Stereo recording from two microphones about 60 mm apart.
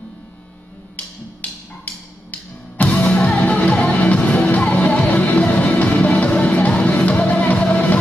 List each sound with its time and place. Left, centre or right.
1.4 s music: left